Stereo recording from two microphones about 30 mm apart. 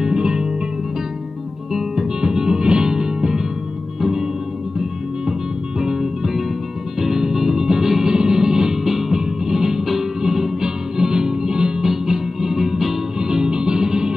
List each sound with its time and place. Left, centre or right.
0.0 s music: right
1.7 s music: centre
5.8 s music: centre
8.8 s music: centre; by 11.7 s right
11.8 s music: centre
13.2 s music: right